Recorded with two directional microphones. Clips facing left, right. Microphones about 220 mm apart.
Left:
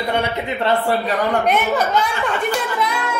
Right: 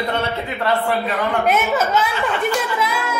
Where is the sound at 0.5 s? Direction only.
30° left (ahead or behind).